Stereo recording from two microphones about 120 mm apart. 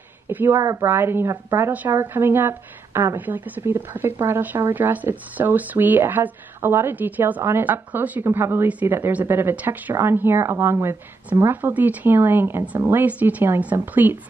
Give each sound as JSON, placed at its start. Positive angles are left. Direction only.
{"t": 0.3, "sound": "a woman's voice", "side_deg": -15}
{"t": 0.6, "sound": "a woman's voice", "side_deg": -25}